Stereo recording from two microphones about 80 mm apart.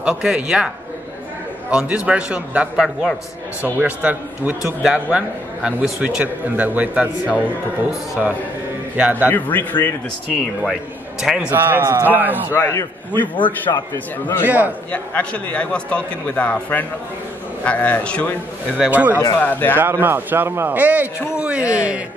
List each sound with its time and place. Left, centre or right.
0.0 s a man's voice: centre
1.7 s a man's voice: centre
8.9 s a man's voice: centre
9.3 s speech: left
10.6 s a man's voice: centre
11.5 s speech: right
12.5 s a man's voice: left
13.4 s a man's voice: left
14.2 s speech: left
14.9 s a man's voice: centre
18.9 s speech: right
19.3 s speech: left
19.8 s a man's voice: right